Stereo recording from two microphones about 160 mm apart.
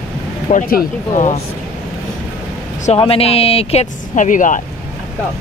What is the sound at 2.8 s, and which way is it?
Speech, 40° left (ahead or behind).